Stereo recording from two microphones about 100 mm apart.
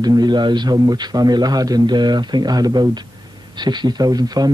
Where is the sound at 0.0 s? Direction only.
45° right (ahead or behind).